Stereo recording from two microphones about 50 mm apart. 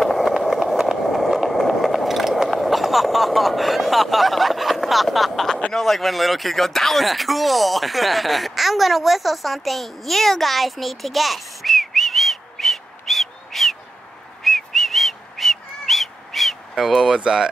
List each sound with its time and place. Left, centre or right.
0.0 s skateboard: centre
5.7 s speech: centre
14.4 s whistling: centre
16.3 s a sound: centre
17.2 s speech: centre